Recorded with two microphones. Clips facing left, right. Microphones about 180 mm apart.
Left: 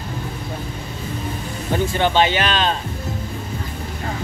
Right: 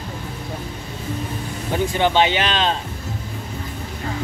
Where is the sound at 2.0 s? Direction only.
15° right (ahead or behind).